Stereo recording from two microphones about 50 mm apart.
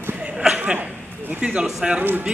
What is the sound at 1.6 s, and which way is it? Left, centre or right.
Speech, centre.